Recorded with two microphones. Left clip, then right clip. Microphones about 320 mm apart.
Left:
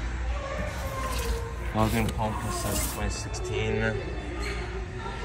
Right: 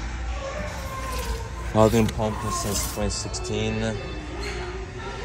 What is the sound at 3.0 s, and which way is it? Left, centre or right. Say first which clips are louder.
Speech: right 5 dB; centre.